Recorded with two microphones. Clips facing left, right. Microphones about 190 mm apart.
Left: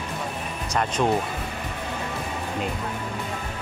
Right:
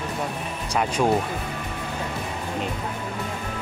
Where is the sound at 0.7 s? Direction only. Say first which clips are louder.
Right 1 dB; 10° right (ahead or behind).